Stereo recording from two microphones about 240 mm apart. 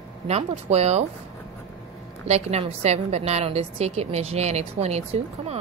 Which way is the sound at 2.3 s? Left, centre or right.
Right.